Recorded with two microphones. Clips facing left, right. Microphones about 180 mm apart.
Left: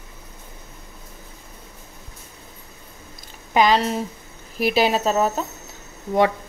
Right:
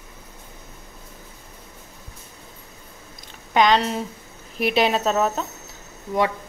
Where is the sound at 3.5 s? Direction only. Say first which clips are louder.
Left 1 dB; 5° left (ahead or behind).